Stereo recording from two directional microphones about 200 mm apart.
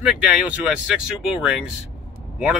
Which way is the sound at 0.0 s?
5° right (ahead or behind).